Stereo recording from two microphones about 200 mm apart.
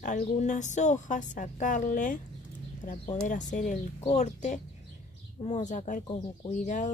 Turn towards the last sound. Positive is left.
turn(degrees=40)  # may be behind; listen again after turning